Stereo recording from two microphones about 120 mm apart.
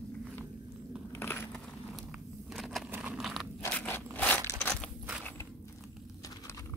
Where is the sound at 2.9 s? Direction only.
10° right (ahead or behind).